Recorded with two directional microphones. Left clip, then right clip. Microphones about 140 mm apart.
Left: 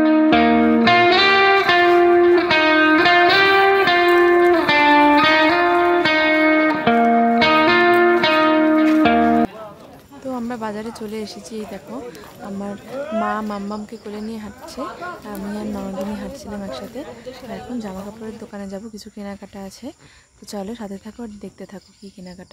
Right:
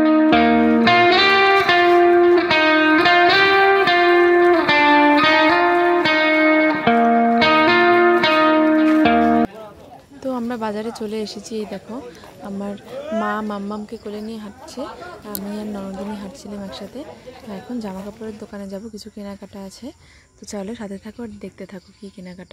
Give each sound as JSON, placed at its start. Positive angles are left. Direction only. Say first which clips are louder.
{"t": 0.0, "sound": "music", "louder": "even", "side_deg": 0}
{"t": 10.2, "sound": "a sound", "louder": "right 2 dB", "side_deg": -25}
{"t": 13.2, "sound": "speech", "louder": "even", "side_deg": -25}
{"t": 17.7, "sound": "speech", "louder": "even", "side_deg": -10}
{"t": 20.5, "sound": "speech", "louder": "even", "side_deg": -10}